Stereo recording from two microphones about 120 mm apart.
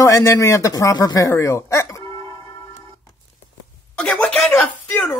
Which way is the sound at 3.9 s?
10° left (ahead or behind).